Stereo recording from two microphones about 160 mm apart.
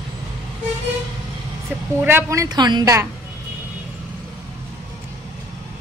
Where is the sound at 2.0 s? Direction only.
15° right (ahead or behind).